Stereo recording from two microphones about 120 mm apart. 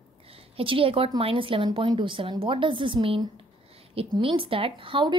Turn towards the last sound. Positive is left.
turn(degrees=-45)  # may be behind; listen again after turning